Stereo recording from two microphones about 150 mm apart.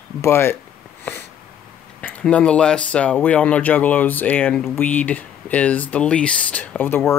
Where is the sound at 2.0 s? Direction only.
10° left (ahead or behind).